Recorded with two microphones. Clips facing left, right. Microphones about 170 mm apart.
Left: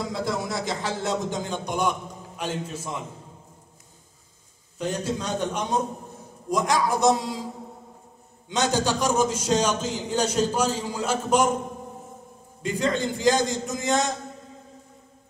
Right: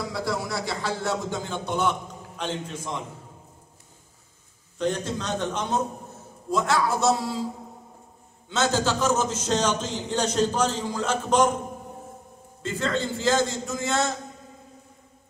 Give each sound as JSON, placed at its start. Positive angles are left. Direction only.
{"t": 0.1, "sound": "speech", "side_deg": 20}
{"t": 4.7, "sound": "a man's voice", "side_deg": 10}
{"t": 8.5, "sound": "a man's voice", "side_deg": 15}
{"t": 12.6, "sound": "a man's voice", "side_deg": 15}